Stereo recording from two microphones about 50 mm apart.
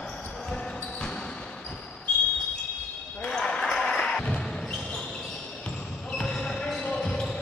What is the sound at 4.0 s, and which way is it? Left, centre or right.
Music, centre.